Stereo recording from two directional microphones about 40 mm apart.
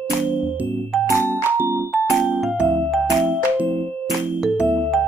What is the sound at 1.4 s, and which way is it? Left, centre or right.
Music, right.